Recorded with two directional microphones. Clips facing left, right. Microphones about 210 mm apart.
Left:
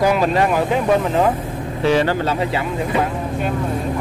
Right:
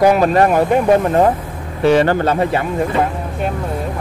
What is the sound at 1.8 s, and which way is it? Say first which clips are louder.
Speech: right 4 dB; 55° right (ahead or behind).